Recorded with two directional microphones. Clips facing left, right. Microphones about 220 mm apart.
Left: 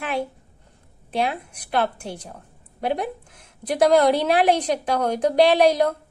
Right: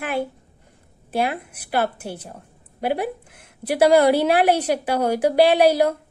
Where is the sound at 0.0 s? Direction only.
Centre (ahead or behind).